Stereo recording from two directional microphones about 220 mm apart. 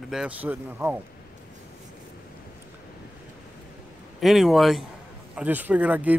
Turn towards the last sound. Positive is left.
turn(degrees=-5)  # may be behind; listen again after turning